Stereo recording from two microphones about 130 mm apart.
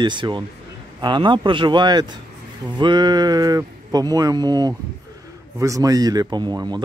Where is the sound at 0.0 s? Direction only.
35° right (ahead or behind).